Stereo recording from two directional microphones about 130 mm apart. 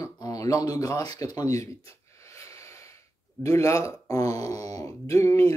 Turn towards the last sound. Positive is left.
turn(degrees=25)  # may be behind; listen again after turning